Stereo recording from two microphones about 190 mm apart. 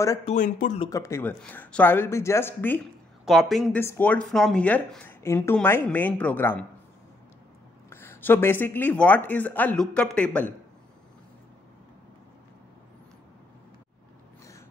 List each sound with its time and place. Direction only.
0.2 s speech: 40° left (ahead or behind)
0.7 s speech: 20° left (ahead or behind)
3.3 s a woman's voice: centre (ahead or behind)
3.8 s speech: 10° left (ahead or behind)
7.9 s speech: 10° left (ahead or behind)